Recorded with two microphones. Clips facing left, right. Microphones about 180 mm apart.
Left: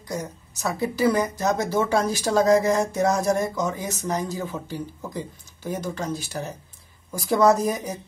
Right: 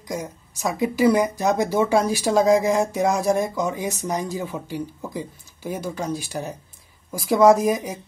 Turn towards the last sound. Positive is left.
turn(degrees=-10)  # may be behind; listen again after turning